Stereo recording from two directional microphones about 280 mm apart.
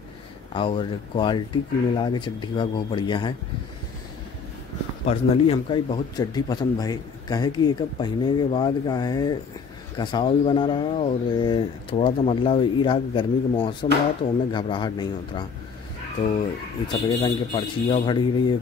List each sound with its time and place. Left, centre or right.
0.5 s a man's voice: centre
5.0 s a man's voice: left